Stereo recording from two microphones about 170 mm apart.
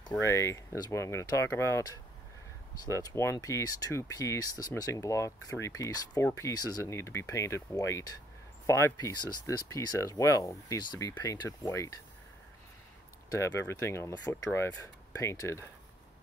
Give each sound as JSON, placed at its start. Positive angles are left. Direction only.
{"t": 0.2, "sound": "speech", "side_deg": 15}
{"t": 13.3, "sound": "speech", "side_deg": 20}